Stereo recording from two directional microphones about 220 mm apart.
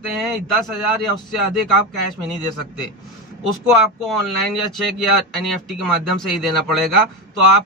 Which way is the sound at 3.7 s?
Centre (ahead or behind).